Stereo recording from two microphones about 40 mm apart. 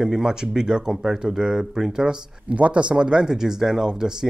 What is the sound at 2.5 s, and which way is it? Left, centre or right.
Speech, right.